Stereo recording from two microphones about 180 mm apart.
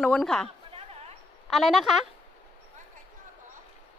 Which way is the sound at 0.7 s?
35° right (ahead or behind).